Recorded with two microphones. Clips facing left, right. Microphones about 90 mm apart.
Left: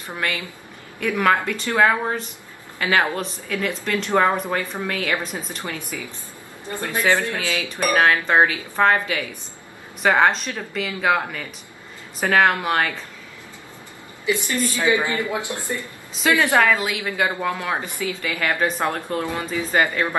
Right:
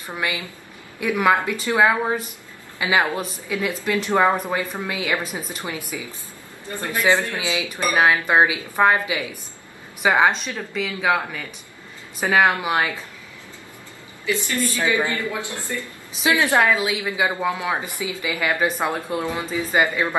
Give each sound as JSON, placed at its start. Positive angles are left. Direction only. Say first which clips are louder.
{"t": 0.1, "sound": "speech", "louder": "even", "side_deg": -10}
{"t": 14.2, "sound": "speech", "louder": "left 1 dB", "side_deg": 20}
{"t": 16.2, "sound": "speech", "louder": "left 1 dB", "side_deg": -15}
{"t": 16.7, "sound": "speech", "louder": "right 1 dB", "side_deg": -5}